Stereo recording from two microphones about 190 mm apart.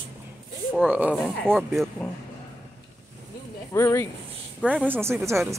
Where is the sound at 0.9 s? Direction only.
10° right (ahead or behind).